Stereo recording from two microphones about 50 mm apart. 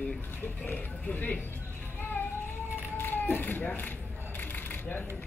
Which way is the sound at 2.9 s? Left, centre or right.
Left.